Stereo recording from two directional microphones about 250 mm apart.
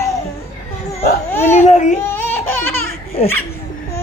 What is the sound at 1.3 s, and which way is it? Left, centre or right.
Speech, centre.